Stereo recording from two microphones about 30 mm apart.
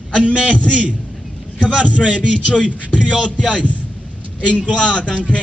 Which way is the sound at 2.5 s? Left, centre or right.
Left.